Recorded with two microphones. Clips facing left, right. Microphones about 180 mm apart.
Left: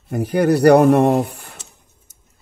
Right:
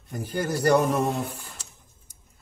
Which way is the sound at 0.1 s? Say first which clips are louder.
Left 12 dB; 70° left (ahead or behind).